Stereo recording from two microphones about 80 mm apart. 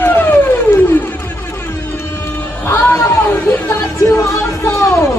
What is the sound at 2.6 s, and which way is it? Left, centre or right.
Speech, left.